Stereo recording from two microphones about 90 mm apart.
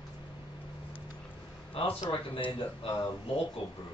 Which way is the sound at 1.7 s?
90° left.